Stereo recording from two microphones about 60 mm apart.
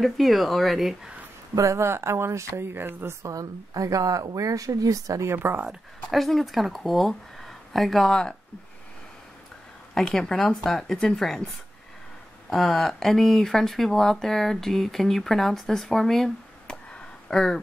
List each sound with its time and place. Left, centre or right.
0.0 s speech: centre
1.5 s speech: right
3.2 s speech: right
5.3 s speech: right
5.7 s speech: centre
9.9 s speech: centre
16.7 s a sound: centre